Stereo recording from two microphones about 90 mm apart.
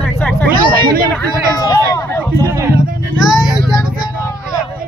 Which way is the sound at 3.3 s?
5° right (ahead or behind).